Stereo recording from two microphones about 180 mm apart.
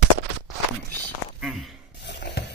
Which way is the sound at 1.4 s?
Centre (ahead or behind).